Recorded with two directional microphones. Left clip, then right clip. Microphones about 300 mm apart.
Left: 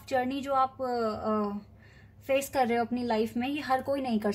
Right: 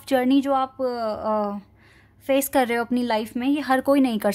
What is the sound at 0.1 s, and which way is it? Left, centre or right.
Speech, right.